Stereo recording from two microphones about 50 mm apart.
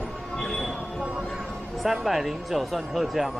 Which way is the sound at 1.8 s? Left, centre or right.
Centre.